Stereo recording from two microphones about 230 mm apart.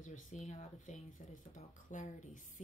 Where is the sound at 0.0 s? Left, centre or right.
Left.